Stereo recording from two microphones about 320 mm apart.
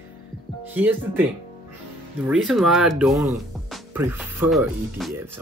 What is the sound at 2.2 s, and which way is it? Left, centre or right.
Speech, centre.